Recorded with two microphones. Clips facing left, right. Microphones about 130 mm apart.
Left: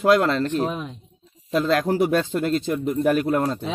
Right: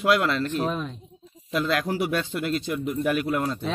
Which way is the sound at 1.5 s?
35° left (ahead or behind).